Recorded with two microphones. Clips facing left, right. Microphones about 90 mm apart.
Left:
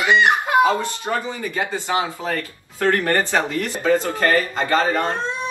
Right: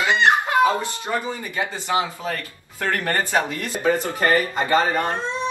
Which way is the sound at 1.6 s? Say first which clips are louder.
Even; 20° left (ahead or behind).